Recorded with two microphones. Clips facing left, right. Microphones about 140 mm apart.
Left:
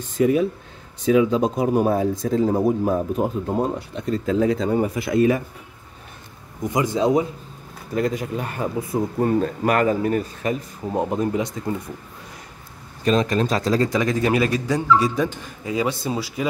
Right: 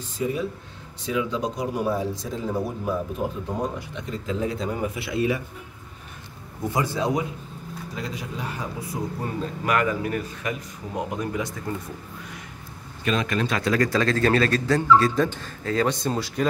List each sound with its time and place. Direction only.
0.2 s speech: 65° left (ahead or behind)
1.0 s speech: 50° left (ahead or behind)
4.6 s speech: 35° left (ahead or behind)
6.7 s speech: 15° left (ahead or behind)
7.9 s speech: 50° left (ahead or behind)
9.7 s a man's voice: 35° left (ahead or behind)
13.0 s a man's voice: 35° left (ahead or behind)
13.6 s speech: 25° left (ahead or behind); by 16.4 s 5° left (ahead or behind)